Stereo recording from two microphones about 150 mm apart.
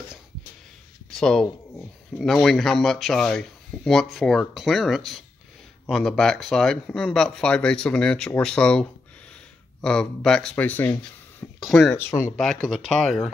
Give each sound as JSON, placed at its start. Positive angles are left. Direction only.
{"t": 1.1, "sound": "speech", "side_deg": 5}
{"t": 12.1, "sound": "speech", "side_deg": 15}
{"t": 12.6, "sound": "speech", "side_deg": 5}